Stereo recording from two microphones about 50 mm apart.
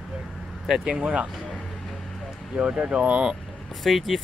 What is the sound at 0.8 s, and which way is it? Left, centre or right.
Speech, right.